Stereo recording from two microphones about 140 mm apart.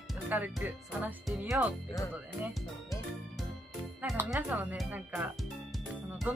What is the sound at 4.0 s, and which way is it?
Speech, 5° right (ahead or behind).